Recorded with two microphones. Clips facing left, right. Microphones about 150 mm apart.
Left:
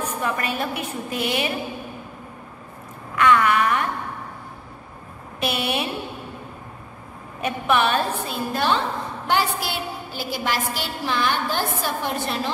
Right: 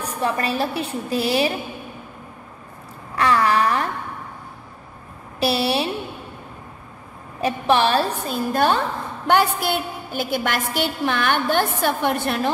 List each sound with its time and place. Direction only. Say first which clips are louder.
0.0 s a woman's voice: right 2 dB; 35° right (ahead or behind)
3.2 s a woman's voice: even; 35° right (ahead or behind)
5.4 s a woman's voice: right 4 dB; 35° right (ahead or behind)
7.4 s a woman's voice: right 3 dB; 35° right (ahead or behind); by 12.4 s 60° right (ahead or behind)